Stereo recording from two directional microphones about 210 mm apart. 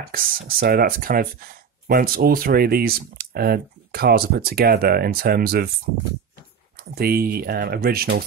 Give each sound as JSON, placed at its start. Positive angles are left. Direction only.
{"t": 0.0, "sound": "speech", "side_deg": -45}
{"t": 6.8, "sound": "speech", "side_deg": -50}